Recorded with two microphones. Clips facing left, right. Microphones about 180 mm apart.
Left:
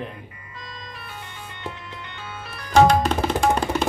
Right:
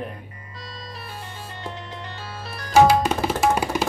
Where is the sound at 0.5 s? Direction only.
35° right (ahead or behind).